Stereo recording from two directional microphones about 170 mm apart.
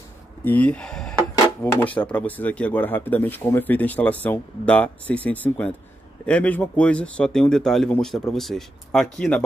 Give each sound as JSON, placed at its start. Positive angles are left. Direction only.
{"t": 0.5, "sound": "speech", "side_deg": 10}